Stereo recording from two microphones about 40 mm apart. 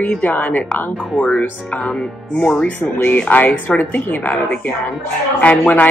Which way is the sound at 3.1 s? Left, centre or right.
Left.